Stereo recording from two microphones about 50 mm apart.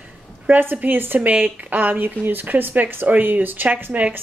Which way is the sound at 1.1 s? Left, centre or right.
Right.